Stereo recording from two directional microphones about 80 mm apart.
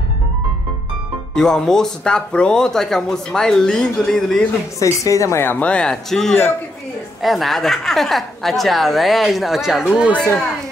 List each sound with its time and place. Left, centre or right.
1.3 s speech: centre
4.7 s a woman's voice: left
5.4 s speech: left
5.7 s a woman's voice: centre